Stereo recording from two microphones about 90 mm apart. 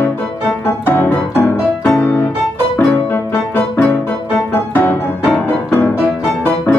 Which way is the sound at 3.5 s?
25° left (ahead or behind).